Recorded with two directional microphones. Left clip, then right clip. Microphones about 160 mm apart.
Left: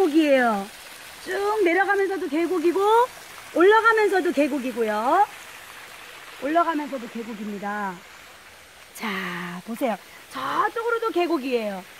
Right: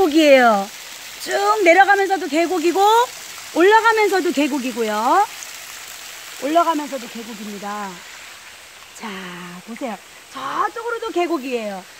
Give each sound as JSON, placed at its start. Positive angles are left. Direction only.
{"t": 0.0, "sound": "speech", "side_deg": -90}
{"t": 7.6, "sound": "speech", "side_deg": 25}
{"t": 9.0, "sound": "speech", "side_deg": 55}
{"t": 10.4, "sound": "speech", "side_deg": 50}
{"t": 10.9, "sound": "speech", "side_deg": 20}